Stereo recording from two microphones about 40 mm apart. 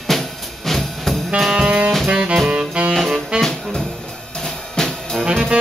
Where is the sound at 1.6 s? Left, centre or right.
Right.